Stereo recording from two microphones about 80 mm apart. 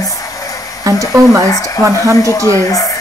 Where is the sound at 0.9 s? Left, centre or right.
Right.